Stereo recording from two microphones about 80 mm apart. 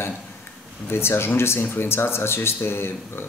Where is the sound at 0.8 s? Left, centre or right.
Left.